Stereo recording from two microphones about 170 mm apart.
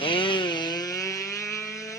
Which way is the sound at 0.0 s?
30° left (ahead or behind).